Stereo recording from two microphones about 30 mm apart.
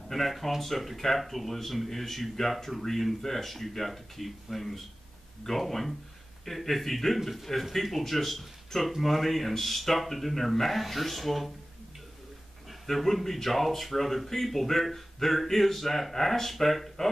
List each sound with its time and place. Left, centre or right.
0.1 s speech: centre
12.8 s speech: centre